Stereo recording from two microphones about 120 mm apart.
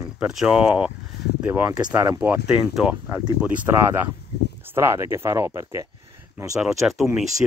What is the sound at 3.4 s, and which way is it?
Speech, 10° right (ahead or behind).